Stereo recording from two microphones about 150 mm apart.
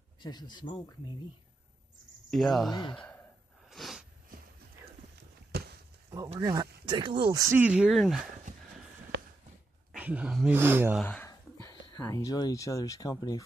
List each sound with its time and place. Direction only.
0.2 s speech: 30° left (ahead or behind)
2.3 s speech: centre (ahead or behind)
2.7 s a man's voice: 30° left (ahead or behind)
3.6 s a sound: centre (ahead or behind)
5.5 s a sound: 90° right
6.4 s speech: 25° right (ahead or behind)
7.3 s speech: 20° right (ahead or behind)
7.6 s speech: 5° right (ahead or behind)
9.9 s speech: 10° right (ahead or behind)
11.0 s speech: 10° left (ahead or behind)
11.2 s speech: 25° left (ahead or behind)